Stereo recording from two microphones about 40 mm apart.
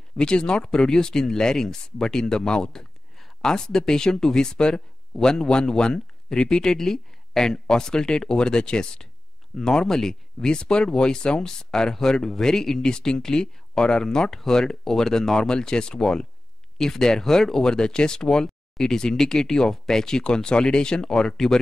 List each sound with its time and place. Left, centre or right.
0.2 s speech: left